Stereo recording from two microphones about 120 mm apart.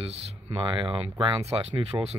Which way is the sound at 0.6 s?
45° right (ahead or behind).